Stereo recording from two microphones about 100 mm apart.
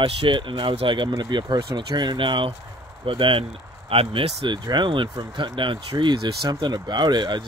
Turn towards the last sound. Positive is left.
turn(degrees=-45)  # may be behind; listen again after turning